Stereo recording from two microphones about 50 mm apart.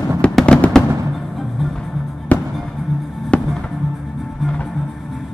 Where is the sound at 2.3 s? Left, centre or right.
Left.